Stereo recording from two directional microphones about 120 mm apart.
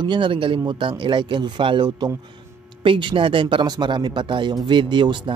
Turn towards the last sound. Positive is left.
turn(degrees=-40)  # may be behind; listen again after turning